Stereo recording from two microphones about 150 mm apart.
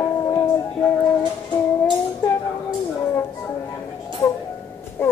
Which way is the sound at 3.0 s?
15° left (ahead or behind).